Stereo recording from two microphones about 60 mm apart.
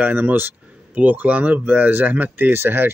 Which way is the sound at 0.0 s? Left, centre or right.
Right.